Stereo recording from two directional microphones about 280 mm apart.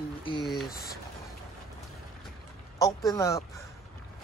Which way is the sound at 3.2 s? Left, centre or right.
Centre.